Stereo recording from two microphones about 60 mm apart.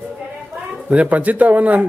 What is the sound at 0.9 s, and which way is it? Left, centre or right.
A man's voice, right.